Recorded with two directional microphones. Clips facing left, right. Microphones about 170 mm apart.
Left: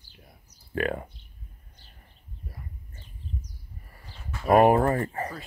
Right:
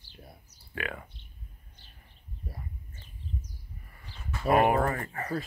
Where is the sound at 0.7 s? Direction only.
40° left (ahead or behind).